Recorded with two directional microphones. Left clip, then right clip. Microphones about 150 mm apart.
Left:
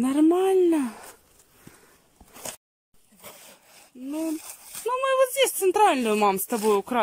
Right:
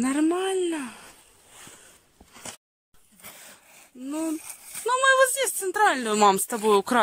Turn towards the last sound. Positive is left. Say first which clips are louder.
# right 2 dB
turn(degrees=5)  # may be behind; listen again after turning